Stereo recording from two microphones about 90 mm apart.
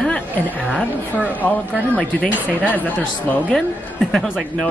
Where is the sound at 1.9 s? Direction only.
15° left (ahead or behind).